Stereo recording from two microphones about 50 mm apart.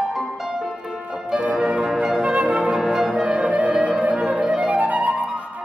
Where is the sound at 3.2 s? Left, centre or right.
Right.